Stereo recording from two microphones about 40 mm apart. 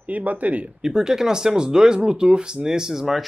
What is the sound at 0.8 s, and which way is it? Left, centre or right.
Speech, centre.